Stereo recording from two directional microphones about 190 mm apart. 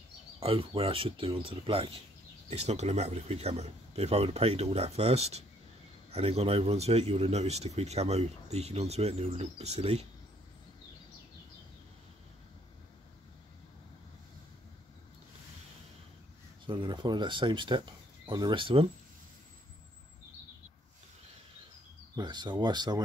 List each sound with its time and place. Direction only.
0.4 s speech: 30° right (ahead or behind)
16.6 s speech: 25° right (ahead or behind)
22.1 s speech: 20° right (ahead or behind)